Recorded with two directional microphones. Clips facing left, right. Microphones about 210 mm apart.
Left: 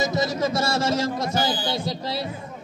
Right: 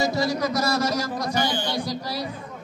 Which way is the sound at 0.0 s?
20° left (ahead or behind).